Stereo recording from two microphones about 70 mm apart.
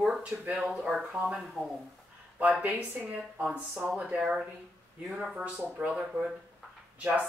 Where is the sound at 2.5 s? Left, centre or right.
Centre.